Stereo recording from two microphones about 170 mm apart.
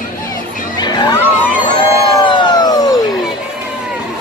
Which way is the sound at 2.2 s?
25° left (ahead or behind).